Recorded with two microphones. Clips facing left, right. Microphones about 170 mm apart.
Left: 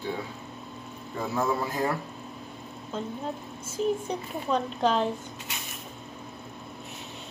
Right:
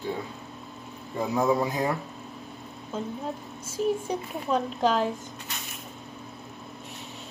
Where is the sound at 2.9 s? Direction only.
5° right (ahead or behind).